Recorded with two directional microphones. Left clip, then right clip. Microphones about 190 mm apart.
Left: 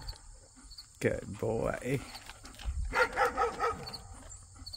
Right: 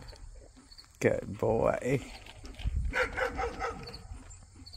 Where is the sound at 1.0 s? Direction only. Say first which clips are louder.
Right 4 dB; 5° right (ahead or behind).